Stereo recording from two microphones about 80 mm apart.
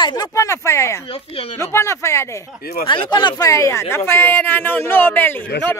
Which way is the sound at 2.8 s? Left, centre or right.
Left.